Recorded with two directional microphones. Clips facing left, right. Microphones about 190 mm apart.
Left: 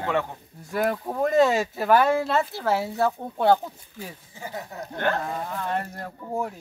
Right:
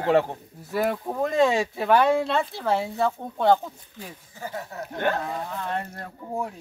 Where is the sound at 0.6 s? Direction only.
Centre (ahead or behind); by 4.8 s 15° left (ahead or behind).